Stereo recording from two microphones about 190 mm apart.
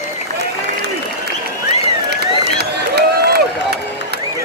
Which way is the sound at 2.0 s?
60° right (ahead or behind).